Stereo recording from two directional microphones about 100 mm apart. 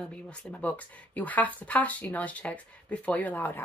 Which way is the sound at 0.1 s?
10° left (ahead or behind).